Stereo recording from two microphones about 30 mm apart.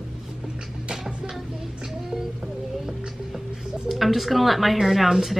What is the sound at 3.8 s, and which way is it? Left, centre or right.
A woman's voice, centre.